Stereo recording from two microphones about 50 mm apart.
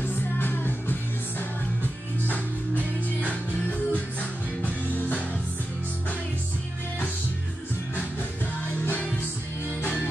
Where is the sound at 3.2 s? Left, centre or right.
Left.